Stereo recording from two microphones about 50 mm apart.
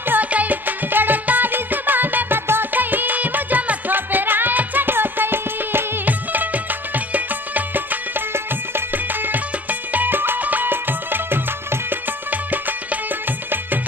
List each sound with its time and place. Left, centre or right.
0.0 s music: right